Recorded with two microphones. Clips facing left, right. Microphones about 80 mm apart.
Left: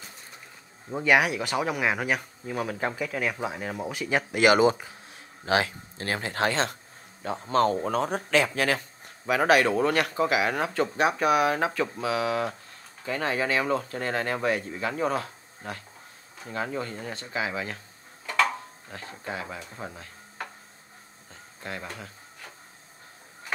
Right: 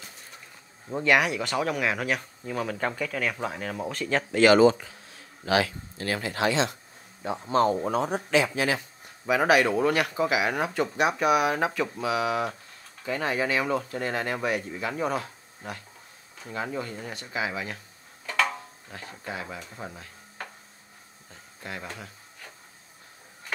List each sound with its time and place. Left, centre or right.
0.9 s speech: centre; by 10.7 s left
10.7 s speech: left
16.4 s speech: left
17.1 s speech: left
19.0 s speech: left